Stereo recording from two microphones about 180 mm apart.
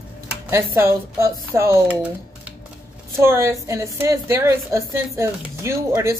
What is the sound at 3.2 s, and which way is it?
A woman's voice, 15° right (ahead or behind).